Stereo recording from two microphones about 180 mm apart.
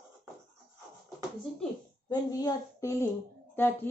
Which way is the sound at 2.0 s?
20° left (ahead or behind).